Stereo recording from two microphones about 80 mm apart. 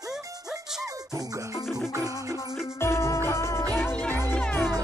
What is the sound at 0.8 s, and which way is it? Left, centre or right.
Music, right.